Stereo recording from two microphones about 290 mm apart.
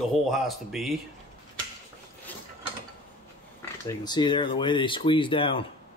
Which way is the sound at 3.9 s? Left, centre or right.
Centre.